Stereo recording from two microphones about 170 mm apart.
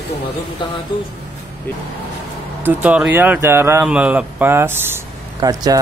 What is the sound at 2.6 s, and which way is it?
Speech, 10° right (ahead or behind).